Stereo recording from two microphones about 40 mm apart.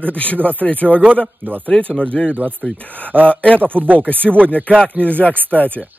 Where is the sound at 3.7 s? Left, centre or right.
Right.